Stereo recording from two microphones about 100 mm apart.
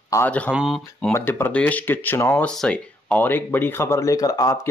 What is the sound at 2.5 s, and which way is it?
Speech, 10° left (ahead or behind).